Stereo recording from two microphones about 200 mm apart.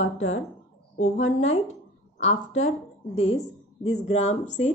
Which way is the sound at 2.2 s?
35° left (ahead or behind).